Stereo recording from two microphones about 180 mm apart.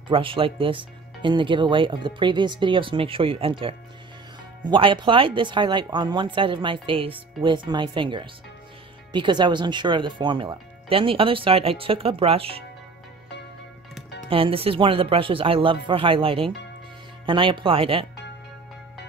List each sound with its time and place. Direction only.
0.1 s speech: 30° right (ahead or behind)
14.3 s speech: 30° right (ahead or behind)